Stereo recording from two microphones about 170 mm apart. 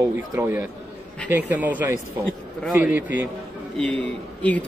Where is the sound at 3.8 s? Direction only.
5° left (ahead or behind).